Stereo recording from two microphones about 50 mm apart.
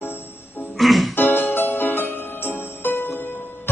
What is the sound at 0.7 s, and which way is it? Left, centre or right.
Music, centre.